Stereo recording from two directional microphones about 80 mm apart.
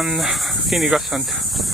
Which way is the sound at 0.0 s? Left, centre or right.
Centre.